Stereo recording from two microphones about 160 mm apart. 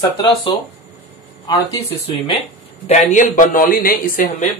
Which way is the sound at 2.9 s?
50° left (ahead or behind).